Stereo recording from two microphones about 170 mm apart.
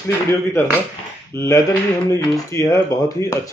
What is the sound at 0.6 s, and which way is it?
Speech, 15° left (ahead or behind).